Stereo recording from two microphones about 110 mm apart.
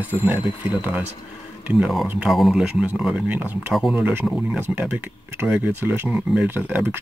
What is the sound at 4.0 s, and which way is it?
Speech, 15° right (ahead or behind).